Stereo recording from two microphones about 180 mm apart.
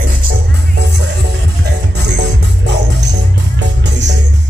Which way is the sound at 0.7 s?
75° right (ahead or behind).